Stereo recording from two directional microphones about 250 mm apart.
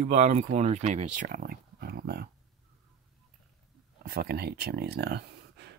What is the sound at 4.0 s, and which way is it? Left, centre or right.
Speech, right.